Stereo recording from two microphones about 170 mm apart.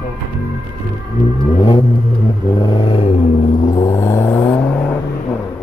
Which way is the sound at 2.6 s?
30° left (ahead or behind).